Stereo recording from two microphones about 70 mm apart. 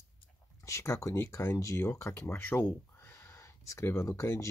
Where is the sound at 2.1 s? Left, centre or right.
Left.